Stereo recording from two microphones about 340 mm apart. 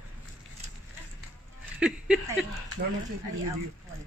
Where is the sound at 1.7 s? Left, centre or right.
Centre.